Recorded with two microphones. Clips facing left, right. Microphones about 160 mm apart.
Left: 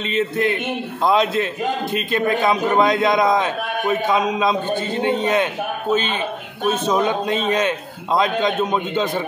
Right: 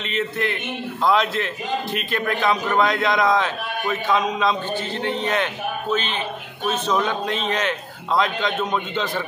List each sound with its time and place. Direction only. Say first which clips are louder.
1.0 s a man's voice: left 2 dB; 20° left (ahead or behind)
6.6 s a man's voice: left 3 dB; 45° left (ahead or behind)
7.0 s a man's voice: left 4 dB; 15° left (ahead or behind)